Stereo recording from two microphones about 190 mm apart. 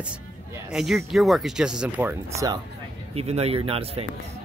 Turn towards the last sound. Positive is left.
turn(degrees=-30)  # may be behind; listen again after turning